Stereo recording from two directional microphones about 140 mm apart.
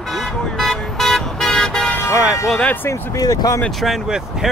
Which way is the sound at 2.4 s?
5° left (ahead or behind).